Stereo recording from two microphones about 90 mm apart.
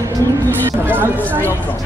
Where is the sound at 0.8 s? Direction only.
20° right (ahead or behind).